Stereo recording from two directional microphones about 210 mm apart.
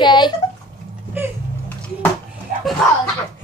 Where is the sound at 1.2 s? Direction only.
10° right (ahead or behind).